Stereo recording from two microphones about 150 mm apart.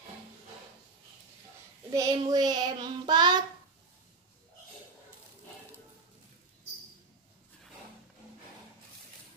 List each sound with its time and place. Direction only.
1.9 s child singing: 20° right (ahead or behind)